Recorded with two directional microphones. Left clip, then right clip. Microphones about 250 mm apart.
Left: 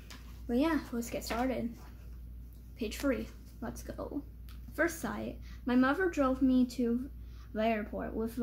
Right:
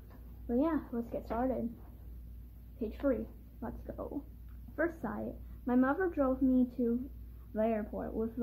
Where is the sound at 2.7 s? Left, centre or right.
Centre.